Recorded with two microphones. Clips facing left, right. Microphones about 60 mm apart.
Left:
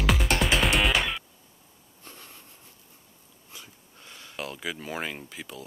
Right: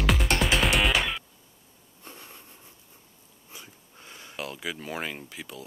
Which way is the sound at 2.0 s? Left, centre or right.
Centre.